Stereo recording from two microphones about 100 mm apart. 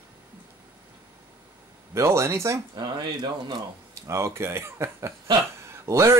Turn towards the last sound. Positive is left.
turn(degrees=-30)  # may be behind; listen again after turning